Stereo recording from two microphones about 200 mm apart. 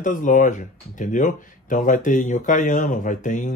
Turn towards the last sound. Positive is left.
turn(degrees=40)  # may be behind; listen again after turning